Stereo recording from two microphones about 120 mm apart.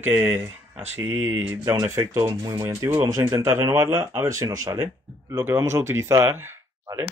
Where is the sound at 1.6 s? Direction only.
25° right (ahead or behind).